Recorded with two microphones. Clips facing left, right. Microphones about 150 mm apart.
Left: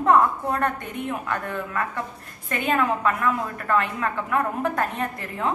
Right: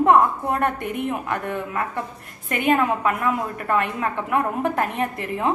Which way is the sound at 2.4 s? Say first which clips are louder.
Right 3 dB; 20° right (ahead or behind).